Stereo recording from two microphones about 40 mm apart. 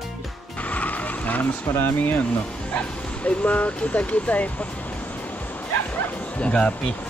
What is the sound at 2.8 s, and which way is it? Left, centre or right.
Speech, left.